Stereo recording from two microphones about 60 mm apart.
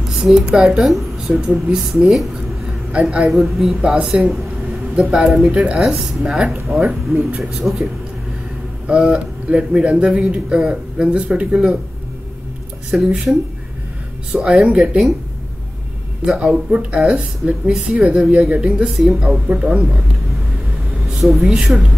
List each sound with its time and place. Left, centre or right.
0.1 s a man's voice: centre
2.3 s a sound: centre
3.3 s a man's voice: centre
12.9 s a man's voice: centre
16.3 s a man's voice: centre
21.2 s a man's voice: centre